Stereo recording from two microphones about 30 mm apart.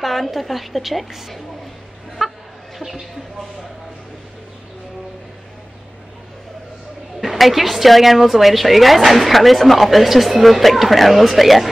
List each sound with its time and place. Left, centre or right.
0.0 s a woman's voice: centre
2.2 s chicken: centre
2.8 s speech: centre
7.2 s a woman's voice: centre